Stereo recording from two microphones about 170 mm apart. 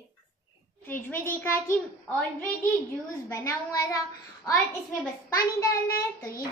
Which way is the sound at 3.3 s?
20° left (ahead or behind).